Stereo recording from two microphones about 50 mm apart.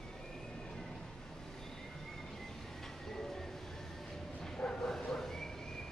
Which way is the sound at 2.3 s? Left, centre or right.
Centre.